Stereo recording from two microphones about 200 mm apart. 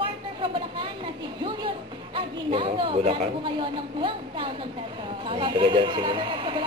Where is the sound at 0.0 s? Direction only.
25° right (ahead or behind).